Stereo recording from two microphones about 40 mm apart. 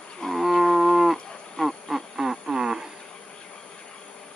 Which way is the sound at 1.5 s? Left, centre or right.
Centre.